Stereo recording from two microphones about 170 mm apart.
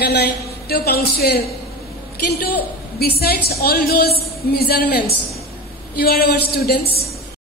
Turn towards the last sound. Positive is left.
turn(degrees=70)  # may be behind; listen again after turning